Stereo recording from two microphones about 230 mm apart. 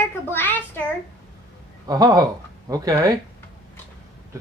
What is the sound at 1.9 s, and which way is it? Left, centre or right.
Speech, centre.